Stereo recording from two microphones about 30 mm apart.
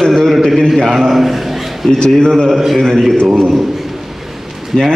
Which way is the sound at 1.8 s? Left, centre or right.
Left.